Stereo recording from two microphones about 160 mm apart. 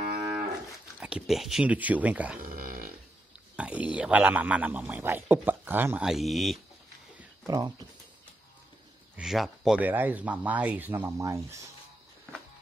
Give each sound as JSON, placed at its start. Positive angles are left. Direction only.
{"t": 0.9, "sound": "speech", "side_deg": -5}
{"t": 2.4, "sound": "a sound", "side_deg": -60}
{"t": 3.5, "sound": "speech", "side_deg": -5}
{"t": 7.4, "sound": "speech", "side_deg": -20}
{"t": 9.1, "sound": "speech", "side_deg": 0}